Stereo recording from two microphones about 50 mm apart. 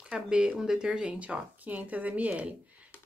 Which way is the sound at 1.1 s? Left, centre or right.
Right.